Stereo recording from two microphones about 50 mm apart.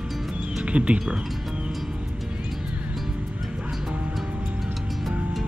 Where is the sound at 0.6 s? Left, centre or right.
Right.